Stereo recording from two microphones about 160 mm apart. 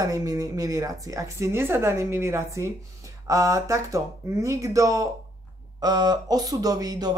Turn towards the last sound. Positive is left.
turn(degrees=-25)  # may be behind; listen again after turning